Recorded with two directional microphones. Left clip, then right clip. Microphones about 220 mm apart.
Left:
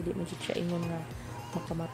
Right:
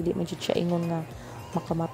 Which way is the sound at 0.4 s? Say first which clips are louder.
Right 7 dB; 25° right (ahead or behind).